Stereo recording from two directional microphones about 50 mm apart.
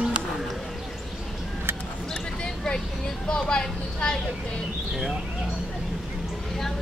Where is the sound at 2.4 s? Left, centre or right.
Centre.